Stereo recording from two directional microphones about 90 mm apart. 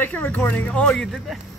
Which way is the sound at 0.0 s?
20° left (ahead or behind).